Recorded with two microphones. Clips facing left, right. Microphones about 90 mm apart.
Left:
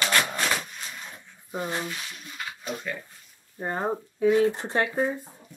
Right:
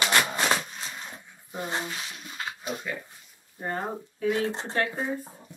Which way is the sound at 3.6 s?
20° left (ahead or behind).